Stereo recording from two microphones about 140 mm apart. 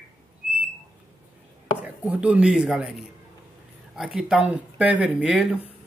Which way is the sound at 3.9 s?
5° right (ahead or behind).